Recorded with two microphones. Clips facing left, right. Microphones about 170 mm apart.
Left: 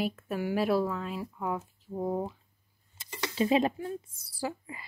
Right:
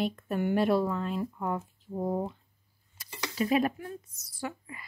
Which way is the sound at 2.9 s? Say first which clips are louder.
Left 2 dB; 25° left (ahead or behind).